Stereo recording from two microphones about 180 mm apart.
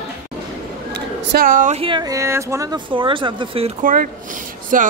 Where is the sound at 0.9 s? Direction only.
60° right (ahead or behind); by 3.7 s 30° right (ahead or behind).